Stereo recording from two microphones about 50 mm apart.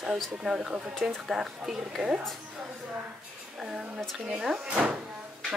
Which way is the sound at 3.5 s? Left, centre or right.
Centre.